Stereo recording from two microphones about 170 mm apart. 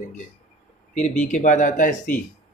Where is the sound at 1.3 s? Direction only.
45° left (ahead or behind).